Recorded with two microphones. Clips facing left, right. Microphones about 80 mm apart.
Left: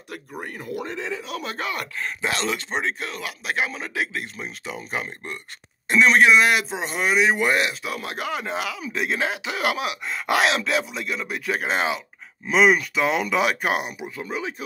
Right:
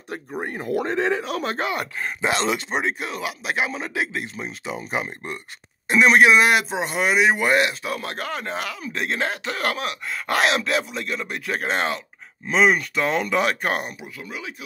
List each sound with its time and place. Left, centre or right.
0.1 s speech: right
0.7 s a man's voice: right
1.6 s speech: right; by 10.3 s centre
10.3 s speech: centre
13.9 s speech: left